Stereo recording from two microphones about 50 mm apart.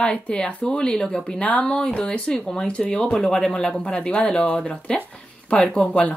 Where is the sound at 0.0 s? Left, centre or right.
Centre.